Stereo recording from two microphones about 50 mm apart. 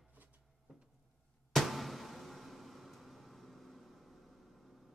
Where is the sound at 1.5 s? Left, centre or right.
Centre.